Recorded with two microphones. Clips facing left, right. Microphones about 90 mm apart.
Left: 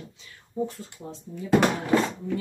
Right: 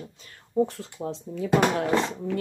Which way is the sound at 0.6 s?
85° right.